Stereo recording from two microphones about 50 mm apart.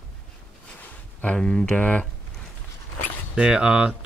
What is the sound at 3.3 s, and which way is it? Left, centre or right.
Speech, centre.